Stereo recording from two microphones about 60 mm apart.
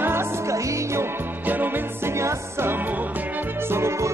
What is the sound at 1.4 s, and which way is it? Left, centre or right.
Music, right.